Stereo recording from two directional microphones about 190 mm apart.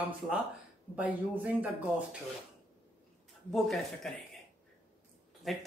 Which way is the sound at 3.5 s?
Centre (ahead or behind).